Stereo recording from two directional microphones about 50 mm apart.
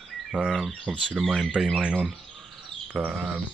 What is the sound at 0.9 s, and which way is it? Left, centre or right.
Speech, centre.